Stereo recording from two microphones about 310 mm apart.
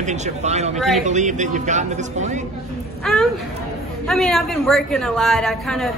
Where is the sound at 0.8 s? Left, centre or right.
Centre.